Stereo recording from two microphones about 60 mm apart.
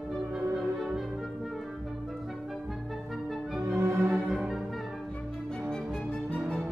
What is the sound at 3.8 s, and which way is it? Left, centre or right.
Music, right.